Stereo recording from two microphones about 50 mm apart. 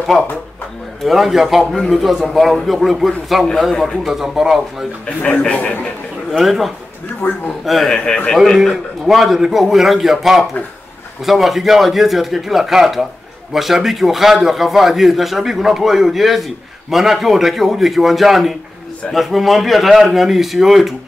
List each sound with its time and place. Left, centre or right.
1.0 s a man's voice: centre
5.0 s speech: left
6.3 s a man's voice: centre
7.2 s a man's voice: left
7.6 s a man's voice: centre
7.9 s a man's voice: centre
8.5 s a man's voice: centre